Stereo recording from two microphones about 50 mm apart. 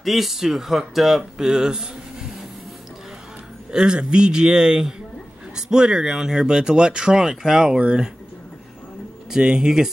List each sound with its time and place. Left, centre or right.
0.0 s speech: centre
3.7 s speech: centre
9.3 s speech: centre